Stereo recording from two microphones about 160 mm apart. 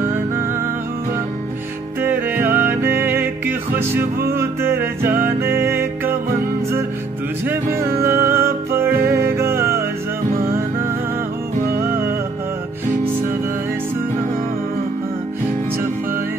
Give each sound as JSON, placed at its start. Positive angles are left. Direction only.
{"t": 2.0, "sound": "music", "side_deg": -10}
{"t": 7.4, "sound": "music", "side_deg": -15}